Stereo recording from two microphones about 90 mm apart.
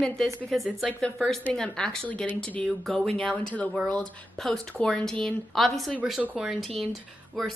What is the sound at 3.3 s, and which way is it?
Speech, 15° left (ahead or behind).